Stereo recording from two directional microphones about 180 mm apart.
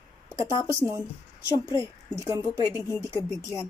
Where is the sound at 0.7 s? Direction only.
15° right (ahead or behind).